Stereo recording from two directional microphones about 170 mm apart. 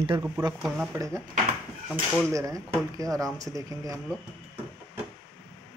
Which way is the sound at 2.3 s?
20° right (ahead or behind).